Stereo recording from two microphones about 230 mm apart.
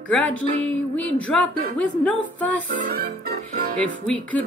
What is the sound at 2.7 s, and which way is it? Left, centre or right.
Music, right.